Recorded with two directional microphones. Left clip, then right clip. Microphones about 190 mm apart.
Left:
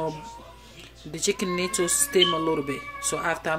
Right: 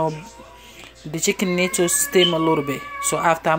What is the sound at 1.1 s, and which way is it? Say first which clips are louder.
A woman's voice: right 5 dB; 20° right (ahead or behind).